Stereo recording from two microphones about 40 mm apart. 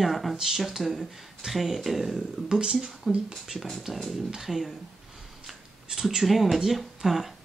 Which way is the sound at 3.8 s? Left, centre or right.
Centre.